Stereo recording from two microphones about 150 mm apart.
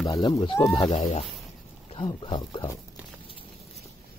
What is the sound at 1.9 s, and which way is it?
Speech, 30° left (ahead or behind).